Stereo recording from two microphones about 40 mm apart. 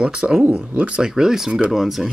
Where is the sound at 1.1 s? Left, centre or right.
Centre.